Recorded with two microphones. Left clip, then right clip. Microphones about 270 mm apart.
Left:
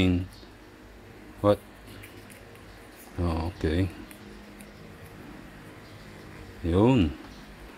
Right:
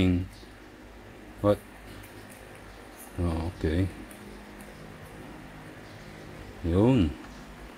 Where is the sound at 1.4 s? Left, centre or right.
Centre.